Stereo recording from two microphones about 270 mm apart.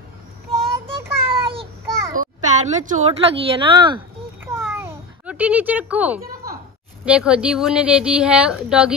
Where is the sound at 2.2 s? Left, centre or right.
Right.